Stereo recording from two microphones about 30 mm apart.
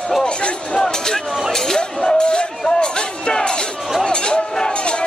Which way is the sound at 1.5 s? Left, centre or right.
Centre.